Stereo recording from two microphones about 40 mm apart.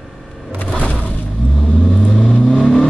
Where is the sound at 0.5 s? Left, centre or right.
Left.